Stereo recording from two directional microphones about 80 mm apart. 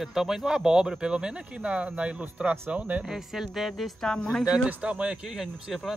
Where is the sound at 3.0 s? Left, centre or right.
Centre.